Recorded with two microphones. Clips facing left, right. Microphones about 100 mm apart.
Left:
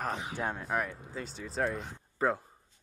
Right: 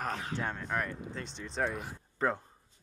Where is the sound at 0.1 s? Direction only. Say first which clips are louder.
Left 1 dB; 15° left (ahead or behind).